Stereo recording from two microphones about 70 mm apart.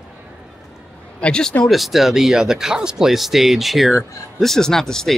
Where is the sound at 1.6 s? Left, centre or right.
Centre.